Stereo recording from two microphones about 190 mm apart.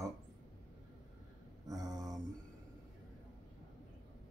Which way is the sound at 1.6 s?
20° right (ahead or behind).